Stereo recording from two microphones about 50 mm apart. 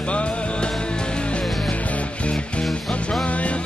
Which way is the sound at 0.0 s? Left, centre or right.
Left.